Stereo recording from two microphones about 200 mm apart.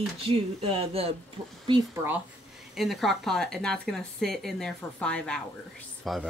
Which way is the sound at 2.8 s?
Centre (ahead or behind).